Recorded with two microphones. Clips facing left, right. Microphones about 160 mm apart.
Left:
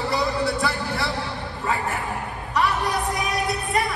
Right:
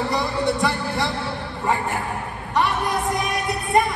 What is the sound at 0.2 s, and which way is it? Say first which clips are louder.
Music: right 2 dB; 20° right (ahead or behind).